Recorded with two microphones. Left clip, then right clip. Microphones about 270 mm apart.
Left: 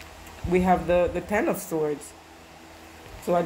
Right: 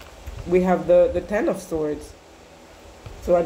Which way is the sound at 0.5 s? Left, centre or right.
Centre.